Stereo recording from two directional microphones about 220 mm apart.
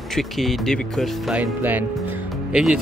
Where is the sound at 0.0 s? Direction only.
Centre (ahead or behind).